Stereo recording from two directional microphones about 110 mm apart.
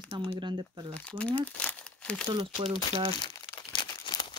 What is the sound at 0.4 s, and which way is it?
Speech, 45° right (ahead or behind).